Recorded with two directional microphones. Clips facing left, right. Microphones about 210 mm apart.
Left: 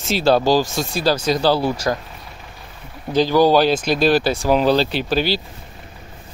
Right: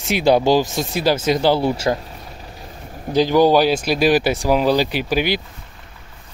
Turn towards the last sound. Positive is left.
turn(degrees=-15)  # may be behind; listen again after turning